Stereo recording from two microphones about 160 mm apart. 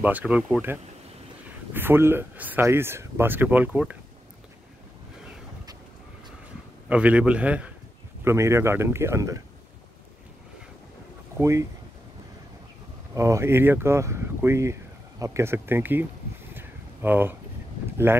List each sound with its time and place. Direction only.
0.0 s speech: 10° right (ahead or behind)
6.9 s speech: 5° right (ahead or behind)
11.3 s speech: 20° right (ahead or behind)
13.1 s speech: 20° right (ahead or behind)
16.5 s a sound: 10° right (ahead or behind)
18.1 s speech: 15° right (ahead or behind)